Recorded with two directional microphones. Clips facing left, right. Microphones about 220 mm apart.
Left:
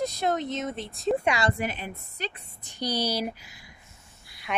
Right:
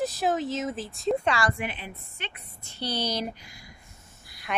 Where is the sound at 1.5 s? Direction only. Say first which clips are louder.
Left 3 dB; 40° left (ahead or behind).